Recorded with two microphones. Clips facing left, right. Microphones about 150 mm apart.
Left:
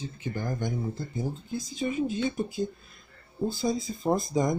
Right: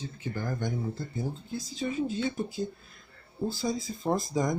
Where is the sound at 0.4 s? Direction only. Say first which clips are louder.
Left 1 dB; 15° left (ahead or behind).